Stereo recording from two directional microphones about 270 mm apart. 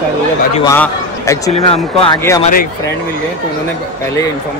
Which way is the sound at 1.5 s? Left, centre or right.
Left.